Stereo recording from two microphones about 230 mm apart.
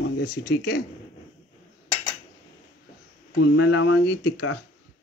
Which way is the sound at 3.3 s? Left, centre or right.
Left.